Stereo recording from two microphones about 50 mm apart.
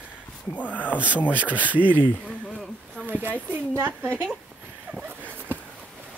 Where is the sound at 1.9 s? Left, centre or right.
Left.